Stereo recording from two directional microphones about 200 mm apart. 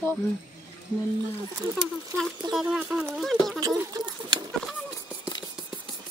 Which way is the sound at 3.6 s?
20° right (ahead or behind).